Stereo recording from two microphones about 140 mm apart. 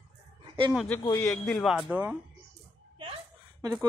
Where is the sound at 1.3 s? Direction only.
5° left (ahead or behind).